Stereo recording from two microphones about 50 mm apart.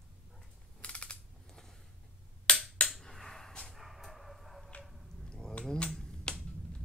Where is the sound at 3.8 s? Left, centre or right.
Centre.